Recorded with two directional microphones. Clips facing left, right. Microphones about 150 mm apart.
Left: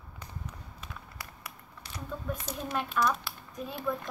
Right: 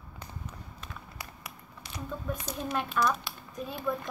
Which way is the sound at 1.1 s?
20° right (ahead or behind).